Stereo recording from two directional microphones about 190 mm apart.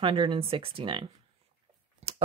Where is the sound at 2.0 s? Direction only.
35° right (ahead or behind).